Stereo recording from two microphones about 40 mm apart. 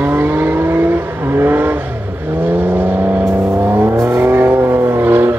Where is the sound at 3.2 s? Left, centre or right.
Right.